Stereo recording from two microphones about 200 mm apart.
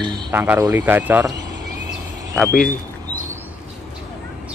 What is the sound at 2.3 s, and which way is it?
Speech, 5° left (ahead or behind).